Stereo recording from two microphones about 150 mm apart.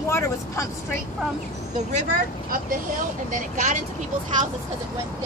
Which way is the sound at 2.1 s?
70° right (ahead or behind).